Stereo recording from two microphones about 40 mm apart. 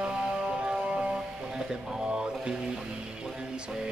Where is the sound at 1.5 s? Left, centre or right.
Centre.